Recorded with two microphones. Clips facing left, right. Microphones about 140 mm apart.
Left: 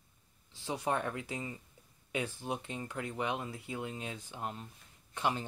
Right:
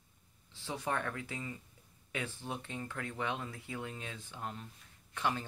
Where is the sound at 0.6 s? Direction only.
15° left (ahead or behind).